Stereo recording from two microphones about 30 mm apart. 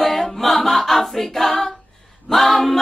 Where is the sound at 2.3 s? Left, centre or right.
Centre.